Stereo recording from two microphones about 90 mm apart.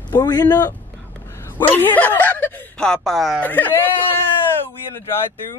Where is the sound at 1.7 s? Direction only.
20° left (ahead or behind); by 3.4 s centre (ahead or behind).